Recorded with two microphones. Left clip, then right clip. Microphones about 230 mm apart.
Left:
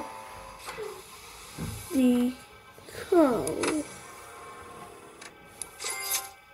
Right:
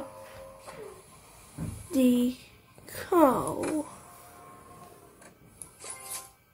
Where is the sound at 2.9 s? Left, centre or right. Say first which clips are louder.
Even; centre.